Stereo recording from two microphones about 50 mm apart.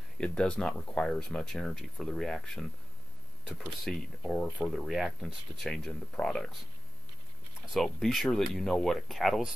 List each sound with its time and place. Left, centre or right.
0.2 s speech: centre
3.5 s speech: centre
4.7 s speech: centre
5.9 s speech: centre
7.7 s speech: centre